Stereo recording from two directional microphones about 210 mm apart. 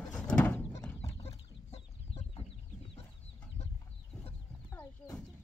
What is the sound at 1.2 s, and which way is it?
Chicken, 30° left (ahead or behind).